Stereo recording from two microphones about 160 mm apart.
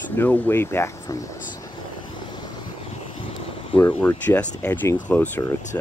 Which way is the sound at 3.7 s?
10° left (ahead or behind).